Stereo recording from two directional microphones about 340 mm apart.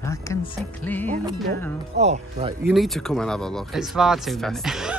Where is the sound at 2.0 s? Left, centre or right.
Centre.